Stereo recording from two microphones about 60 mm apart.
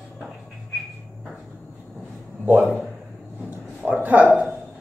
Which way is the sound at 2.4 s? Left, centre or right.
Right.